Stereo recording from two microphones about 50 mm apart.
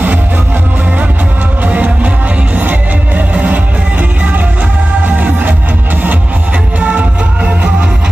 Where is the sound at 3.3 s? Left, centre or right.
Right.